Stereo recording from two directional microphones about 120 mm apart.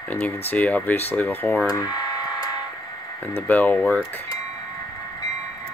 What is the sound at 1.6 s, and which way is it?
Speech, 30° left (ahead or behind).